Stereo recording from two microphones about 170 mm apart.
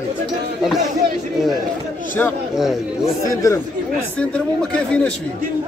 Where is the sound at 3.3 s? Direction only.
20° left (ahead or behind).